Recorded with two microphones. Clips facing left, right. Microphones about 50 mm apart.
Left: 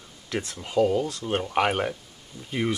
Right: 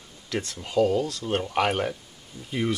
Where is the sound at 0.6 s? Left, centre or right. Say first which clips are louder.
Even; centre.